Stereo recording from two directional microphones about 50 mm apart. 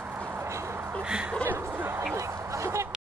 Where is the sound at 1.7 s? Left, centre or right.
Right.